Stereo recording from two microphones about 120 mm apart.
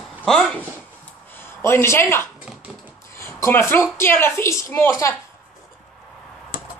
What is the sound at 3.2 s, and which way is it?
A woman's voice, 25° left (ahead or behind).